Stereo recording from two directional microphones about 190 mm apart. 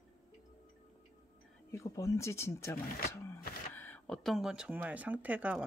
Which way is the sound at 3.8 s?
5° left (ahead or behind).